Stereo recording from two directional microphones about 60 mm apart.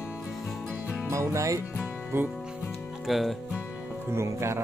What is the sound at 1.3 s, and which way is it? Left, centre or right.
Speech, right.